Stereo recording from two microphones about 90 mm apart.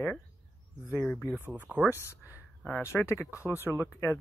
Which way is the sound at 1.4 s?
20° right (ahead or behind).